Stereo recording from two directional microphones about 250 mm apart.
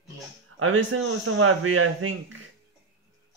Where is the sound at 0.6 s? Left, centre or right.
Right.